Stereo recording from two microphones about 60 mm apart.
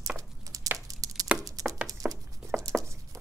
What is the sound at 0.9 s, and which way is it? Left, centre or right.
Chopping, right.